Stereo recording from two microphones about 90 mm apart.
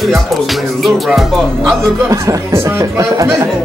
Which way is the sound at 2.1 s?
35° right (ahead or behind).